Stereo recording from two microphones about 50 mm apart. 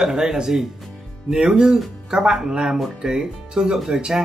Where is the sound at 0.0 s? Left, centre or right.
Centre.